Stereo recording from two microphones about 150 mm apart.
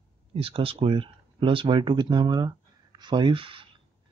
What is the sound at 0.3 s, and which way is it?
Speech, 40° right (ahead or behind).